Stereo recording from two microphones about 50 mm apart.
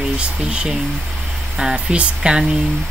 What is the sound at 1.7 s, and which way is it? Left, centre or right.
Speech, right.